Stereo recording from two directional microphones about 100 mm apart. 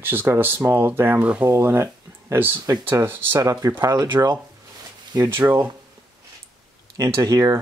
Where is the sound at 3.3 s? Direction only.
35° right (ahead or behind).